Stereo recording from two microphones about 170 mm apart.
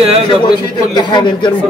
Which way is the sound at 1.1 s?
25° left (ahead or behind).